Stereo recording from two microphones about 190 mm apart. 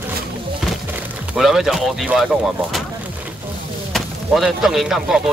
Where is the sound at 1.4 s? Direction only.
Centre (ahead or behind).